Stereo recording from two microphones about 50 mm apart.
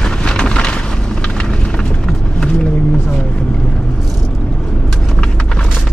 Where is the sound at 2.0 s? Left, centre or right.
Centre.